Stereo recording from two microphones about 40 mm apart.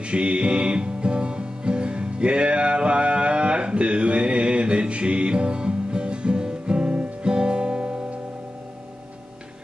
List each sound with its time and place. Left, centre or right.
0.0 s music: right